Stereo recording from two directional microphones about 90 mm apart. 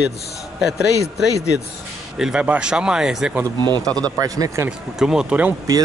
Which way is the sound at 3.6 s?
55° right (ahead or behind).